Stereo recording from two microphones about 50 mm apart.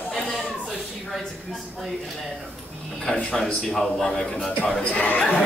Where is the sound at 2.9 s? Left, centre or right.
Left.